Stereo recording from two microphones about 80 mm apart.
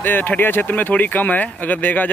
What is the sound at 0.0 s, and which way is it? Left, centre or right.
Speech, left.